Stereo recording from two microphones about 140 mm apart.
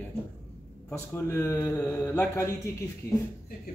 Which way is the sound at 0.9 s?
20° left (ahead or behind).